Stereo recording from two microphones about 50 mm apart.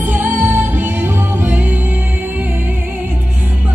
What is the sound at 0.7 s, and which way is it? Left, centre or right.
Music, right.